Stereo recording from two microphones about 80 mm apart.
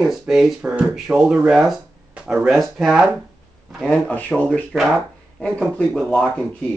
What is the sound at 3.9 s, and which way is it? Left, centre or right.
Speech, centre.